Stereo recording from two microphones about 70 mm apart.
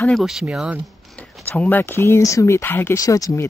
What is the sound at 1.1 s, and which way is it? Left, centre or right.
Speech, left.